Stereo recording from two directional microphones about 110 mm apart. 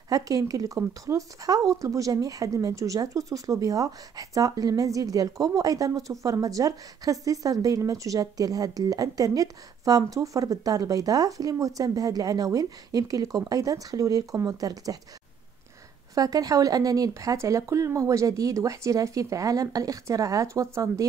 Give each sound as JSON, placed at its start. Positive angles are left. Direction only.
{"t": 0.1, "sound": "speech", "side_deg": -30}
{"t": 16.2, "sound": "speech", "side_deg": -35}